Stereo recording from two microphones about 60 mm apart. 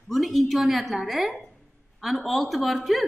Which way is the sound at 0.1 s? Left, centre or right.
Centre.